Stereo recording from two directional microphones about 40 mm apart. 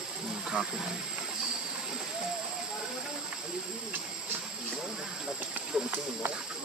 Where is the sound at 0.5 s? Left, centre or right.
Right.